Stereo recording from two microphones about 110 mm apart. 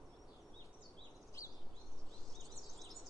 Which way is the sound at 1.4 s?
30° left (ahead or behind).